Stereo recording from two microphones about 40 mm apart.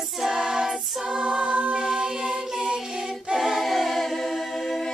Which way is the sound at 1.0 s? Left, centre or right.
Right.